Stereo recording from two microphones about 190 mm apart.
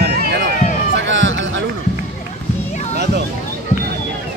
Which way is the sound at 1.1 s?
80° right.